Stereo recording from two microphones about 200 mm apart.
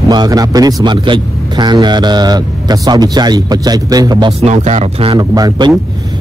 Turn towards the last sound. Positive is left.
turn(degrees=-20)  # may be behind; listen again after turning